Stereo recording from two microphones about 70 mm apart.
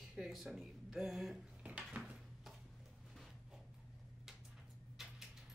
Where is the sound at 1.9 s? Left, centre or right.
Centre.